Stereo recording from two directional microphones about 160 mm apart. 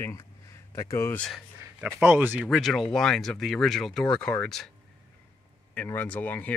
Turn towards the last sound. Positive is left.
turn(degrees=10)  # may be behind; listen again after turning